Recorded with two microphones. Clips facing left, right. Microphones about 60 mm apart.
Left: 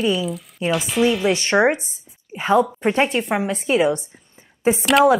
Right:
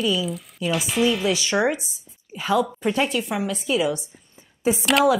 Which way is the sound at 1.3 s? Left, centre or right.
Left.